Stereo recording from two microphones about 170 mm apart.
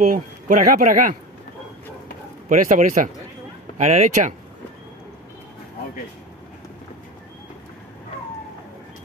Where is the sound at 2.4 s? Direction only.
50° right (ahead or behind).